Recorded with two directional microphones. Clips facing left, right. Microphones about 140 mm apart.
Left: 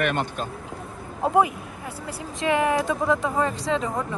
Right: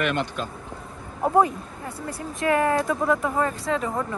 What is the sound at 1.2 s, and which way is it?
Speech, 15° left (ahead or behind).